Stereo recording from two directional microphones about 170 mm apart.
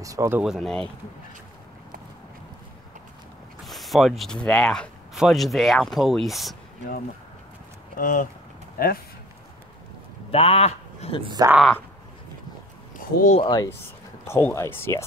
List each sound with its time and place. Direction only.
0.0 s speech: 20° right (ahead or behind)
0.4 s speech: centre (ahead or behind)
3.6 s mechanisms: centre (ahead or behind)
4.5 s speech: 5° left (ahead or behind)
8.0 s speech: 50° left (ahead or behind)
10.3 s speech: 35° left (ahead or behind)
11.2 s speech: 25° right (ahead or behind)
12.9 s a sound: 50° left (ahead or behind)
13.4 s speech: 25° left (ahead or behind)